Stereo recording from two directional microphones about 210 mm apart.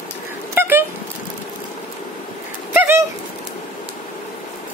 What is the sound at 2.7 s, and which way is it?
Bird, 10° right (ahead or behind).